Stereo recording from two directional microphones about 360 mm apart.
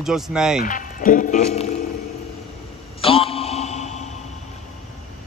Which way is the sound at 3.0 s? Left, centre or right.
Centre.